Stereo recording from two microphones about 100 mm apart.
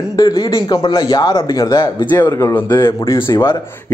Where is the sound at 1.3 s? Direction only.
35° left (ahead or behind).